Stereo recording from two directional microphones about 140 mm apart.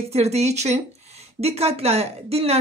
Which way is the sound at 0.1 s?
50° right (ahead or behind).